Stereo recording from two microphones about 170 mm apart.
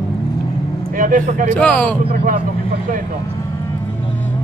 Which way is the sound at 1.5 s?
10° left (ahead or behind).